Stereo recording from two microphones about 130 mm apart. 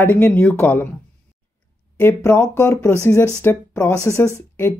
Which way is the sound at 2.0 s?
15° left (ahead or behind).